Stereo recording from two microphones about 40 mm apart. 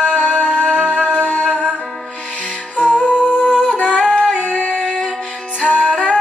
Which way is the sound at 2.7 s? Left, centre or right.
Left.